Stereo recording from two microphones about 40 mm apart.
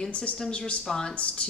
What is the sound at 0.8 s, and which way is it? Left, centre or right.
Speech, centre.